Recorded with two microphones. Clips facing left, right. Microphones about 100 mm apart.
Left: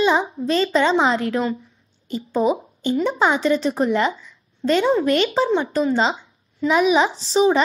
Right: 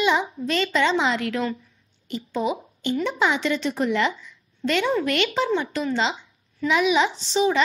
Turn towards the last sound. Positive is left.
turn(degrees=35)  # may be behind; listen again after turning